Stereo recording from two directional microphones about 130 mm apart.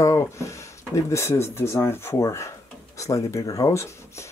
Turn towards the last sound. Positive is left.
turn(degrees=20)  # may be behind; listen again after turning